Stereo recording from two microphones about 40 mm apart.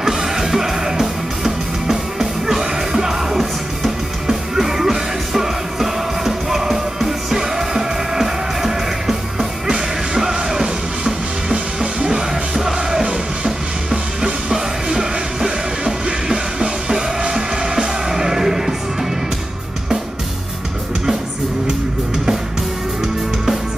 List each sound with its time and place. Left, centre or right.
0.0 s music: centre
11.5 s music: right
12.1 s music: centre